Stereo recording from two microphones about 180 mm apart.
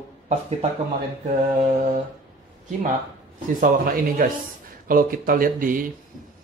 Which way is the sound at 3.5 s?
50° right (ahead or behind).